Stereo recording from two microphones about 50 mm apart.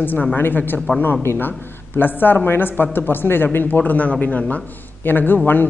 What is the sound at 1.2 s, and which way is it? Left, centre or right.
Speech, left.